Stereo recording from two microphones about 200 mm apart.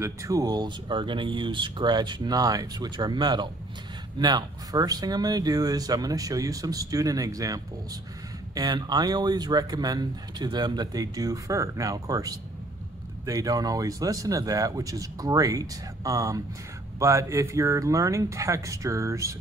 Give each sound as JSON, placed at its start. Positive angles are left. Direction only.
{"t": 0.0, "sound": "speech", "side_deg": -15}